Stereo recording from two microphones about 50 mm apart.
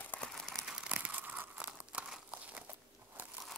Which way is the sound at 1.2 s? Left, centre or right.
Right.